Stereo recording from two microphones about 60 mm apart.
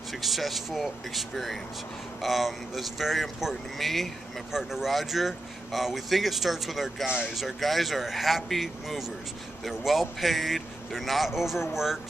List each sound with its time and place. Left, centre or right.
0.1 s speech: centre